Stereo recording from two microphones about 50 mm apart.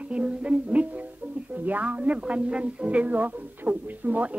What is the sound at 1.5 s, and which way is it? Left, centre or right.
A woman's voice, right.